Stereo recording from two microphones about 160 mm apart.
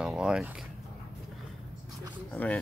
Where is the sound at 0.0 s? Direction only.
5° right (ahead or behind).